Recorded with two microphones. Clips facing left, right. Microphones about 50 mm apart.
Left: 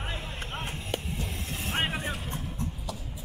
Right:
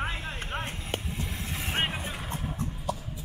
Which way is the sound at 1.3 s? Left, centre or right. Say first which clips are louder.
Right 1 dB; right.